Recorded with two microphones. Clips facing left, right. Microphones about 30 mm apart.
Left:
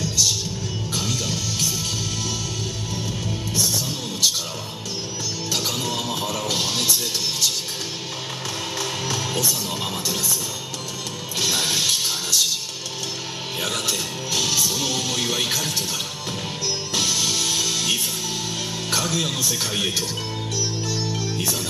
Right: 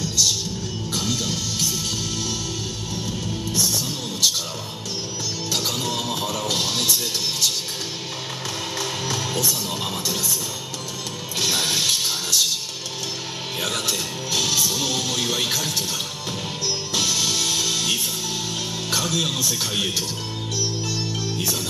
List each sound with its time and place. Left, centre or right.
0.9 s music: centre
5.5 s music: centre
8.7 s music: centre
11.3 s music: centre
13.6 s music: centre
16.9 s music: centre